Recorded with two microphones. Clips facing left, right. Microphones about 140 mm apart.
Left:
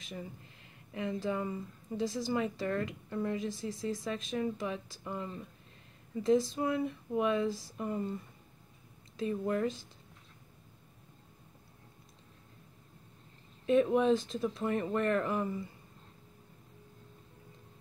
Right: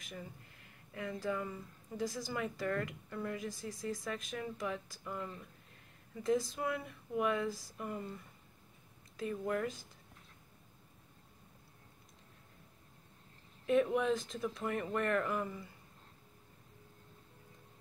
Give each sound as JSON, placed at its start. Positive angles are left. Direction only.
{"t": 0.9, "sound": "a woman's voice", "side_deg": 20}
{"t": 9.1, "sound": "a woman's voice", "side_deg": 25}
{"t": 13.7, "sound": "a woman's voice", "side_deg": 25}